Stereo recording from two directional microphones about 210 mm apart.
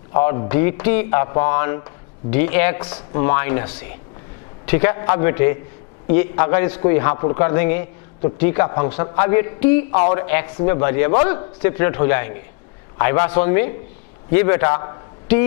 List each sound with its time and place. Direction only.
0.1 s a man's voice: 20° left (ahead or behind)
2.8 s speech: 25° left (ahead or behind)
3.3 s a man's voice: 15° left (ahead or behind)